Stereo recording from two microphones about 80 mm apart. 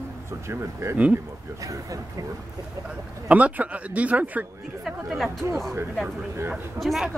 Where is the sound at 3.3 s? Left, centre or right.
Centre.